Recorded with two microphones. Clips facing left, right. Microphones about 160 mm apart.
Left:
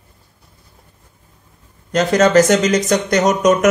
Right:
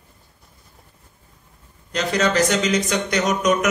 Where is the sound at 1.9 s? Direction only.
45° left (ahead or behind).